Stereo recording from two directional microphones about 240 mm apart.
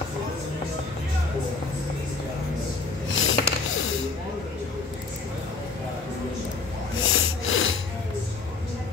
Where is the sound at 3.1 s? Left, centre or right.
Left.